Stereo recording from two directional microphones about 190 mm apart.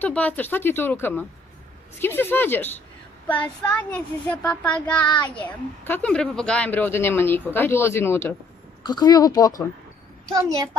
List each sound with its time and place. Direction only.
0.0 s a woman's voice: 10° left (ahead or behind)
10.3 s a woman's voice: 20° right (ahead or behind)